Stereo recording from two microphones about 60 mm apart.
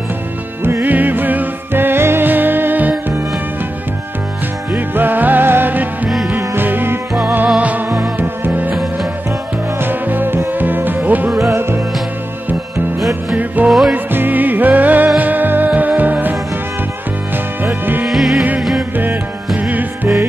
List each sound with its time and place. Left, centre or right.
0.7 s music: right
4.7 s music: right
6.0 s music: centre
6.3 s music: right
7.4 s music: right
7.9 s music: right
9.8 s music: right
11.4 s music: right
13.7 s music: centre
13.9 s music: right
17.6 s music: right
18.0 s music: centre
19.5 s music: centre